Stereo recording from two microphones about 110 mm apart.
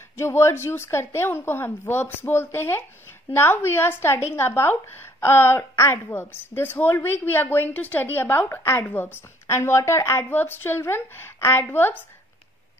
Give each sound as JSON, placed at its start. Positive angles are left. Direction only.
{"t": 0.2, "sound": "a woman's voice", "side_deg": 25}